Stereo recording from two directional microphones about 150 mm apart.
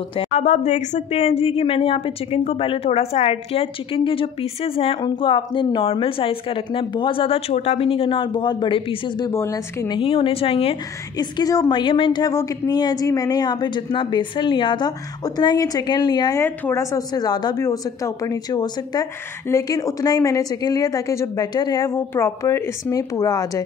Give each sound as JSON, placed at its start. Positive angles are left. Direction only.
{"t": 0.1, "sound": "speech", "side_deg": 40}
{"t": 9.3, "sound": "a woman's voice", "side_deg": 15}
{"t": 9.8, "sound": "a woman's voice", "side_deg": 35}